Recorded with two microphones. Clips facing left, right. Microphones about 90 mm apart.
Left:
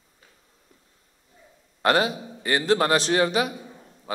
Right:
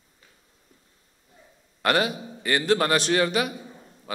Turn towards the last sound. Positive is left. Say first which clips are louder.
# left 1 dB
turn(degrees=20)  # may be behind; listen again after turning